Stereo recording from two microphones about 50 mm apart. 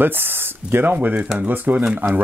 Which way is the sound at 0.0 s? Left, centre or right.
Right.